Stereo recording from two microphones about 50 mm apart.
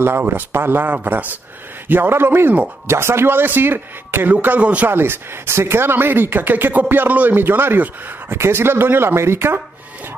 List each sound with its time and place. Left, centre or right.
0.2 s speech: right
2.9 s speech: right
4.3 s speech: right
4.8 s speech: right